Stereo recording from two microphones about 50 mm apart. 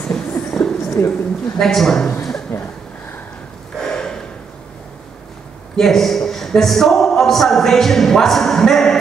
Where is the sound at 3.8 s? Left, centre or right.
Centre.